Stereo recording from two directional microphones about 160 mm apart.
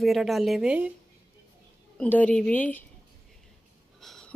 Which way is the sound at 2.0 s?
10° left (ahead or behind).